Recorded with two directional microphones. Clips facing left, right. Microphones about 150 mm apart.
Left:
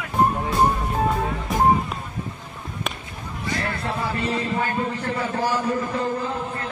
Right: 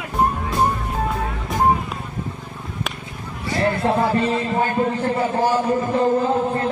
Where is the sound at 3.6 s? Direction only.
25° right (ahead or behind).